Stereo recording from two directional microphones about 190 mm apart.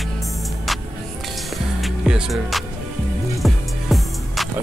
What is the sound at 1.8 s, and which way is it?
Music, centre (ahead or behind).